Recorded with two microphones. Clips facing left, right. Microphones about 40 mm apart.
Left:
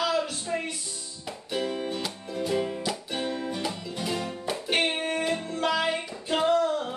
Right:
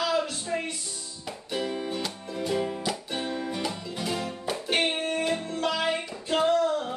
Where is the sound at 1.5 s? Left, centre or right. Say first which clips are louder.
Left 1 dB; centre.